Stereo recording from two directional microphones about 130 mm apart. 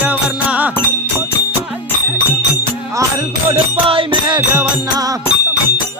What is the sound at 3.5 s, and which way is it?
Music, 45° right (ahead or behind).